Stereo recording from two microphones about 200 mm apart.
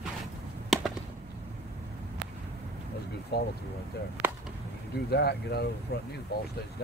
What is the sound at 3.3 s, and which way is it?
Speech, 55° left (ahead or behind).